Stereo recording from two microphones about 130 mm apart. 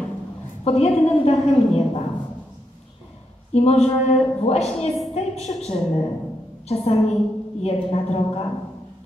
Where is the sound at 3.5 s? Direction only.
55° left (ahead or behind).